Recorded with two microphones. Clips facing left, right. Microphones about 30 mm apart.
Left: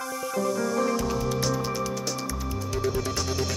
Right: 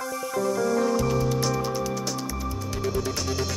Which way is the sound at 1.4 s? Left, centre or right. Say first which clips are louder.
Right 1 dB; centre.